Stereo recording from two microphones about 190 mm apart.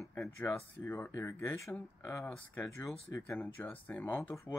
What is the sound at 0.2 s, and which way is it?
Speech, 5° left (ahead or behind).